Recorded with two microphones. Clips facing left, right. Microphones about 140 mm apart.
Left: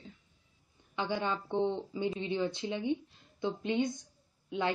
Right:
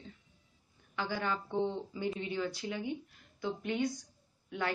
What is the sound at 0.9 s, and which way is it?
Speech, 20° left (ahead or behind).